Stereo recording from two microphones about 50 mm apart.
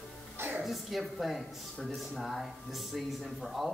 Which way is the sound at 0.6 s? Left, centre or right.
Centre.